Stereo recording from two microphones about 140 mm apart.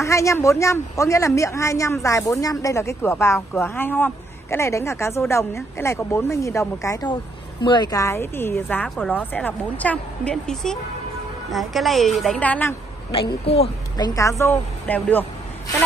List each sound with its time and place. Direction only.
0.0 s a woman's voice: 20° left (ahead or behind); by 12.4 s centre (ahead or behind)
12.4 s speech: 10° left (ahead or behind)
13.1 s a woman's voice: 45° left (ahead or behind)
13.9 s a woman's voice: 25° left (ahead or behind)